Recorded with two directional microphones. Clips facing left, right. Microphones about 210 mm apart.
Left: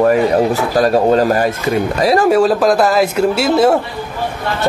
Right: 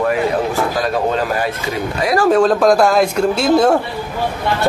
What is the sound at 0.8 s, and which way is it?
Speech, 40° left (ahead or behind).